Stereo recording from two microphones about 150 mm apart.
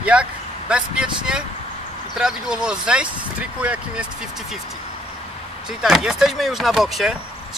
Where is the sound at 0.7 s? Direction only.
5° right (ahead or behind).